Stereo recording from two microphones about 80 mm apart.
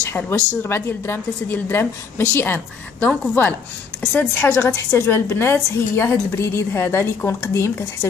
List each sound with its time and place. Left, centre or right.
0.0 s a woman's voice: left